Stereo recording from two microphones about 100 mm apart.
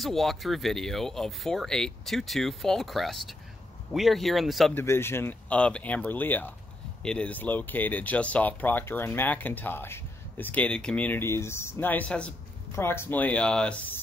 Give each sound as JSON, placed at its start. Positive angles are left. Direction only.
{"t": 0.0, "sound": "speech", "side_deg": 0}
{"t": 4.7, "sound": "speech", "side_deg": 25}
{"t": 5.5, "sound": "speech", "side_deg": 10}
{"t": 12.7, "sound": "speech", "side_deg": 25}